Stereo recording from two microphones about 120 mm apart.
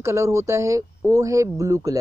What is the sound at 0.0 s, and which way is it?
Speech, 25° right (ahead or behind).